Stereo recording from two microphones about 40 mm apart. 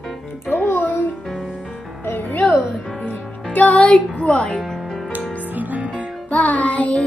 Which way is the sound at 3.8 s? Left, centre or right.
Left.